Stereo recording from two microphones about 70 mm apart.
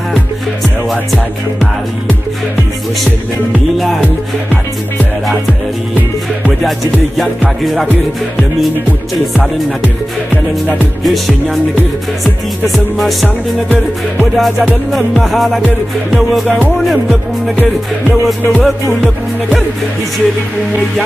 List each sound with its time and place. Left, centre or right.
0.8 s music: centre
7.2 s music: centre
11.1 s music: centre
12.6 s music: centre
14.3 s music: centre
18.0 s music: left